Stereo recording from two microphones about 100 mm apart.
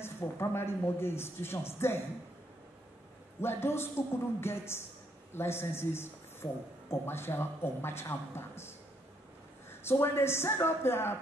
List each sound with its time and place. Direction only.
0.0 s speech: 25° left (ahead or behind)
3.3 s speech: 25° left (ahead or behind)